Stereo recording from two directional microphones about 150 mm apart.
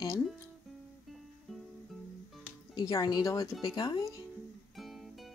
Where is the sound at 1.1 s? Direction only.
Centre (ahead or behind).